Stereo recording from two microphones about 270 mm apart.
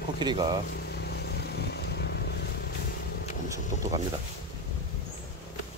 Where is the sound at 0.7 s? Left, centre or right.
Left.